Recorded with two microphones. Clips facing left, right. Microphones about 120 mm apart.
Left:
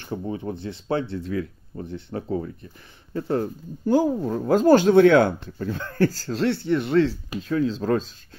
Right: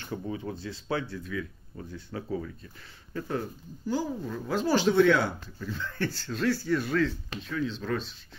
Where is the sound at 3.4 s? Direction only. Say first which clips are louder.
Left 9 dB; 50° left (ahead or behind); by 7.1 s 25° left (ahead or behind).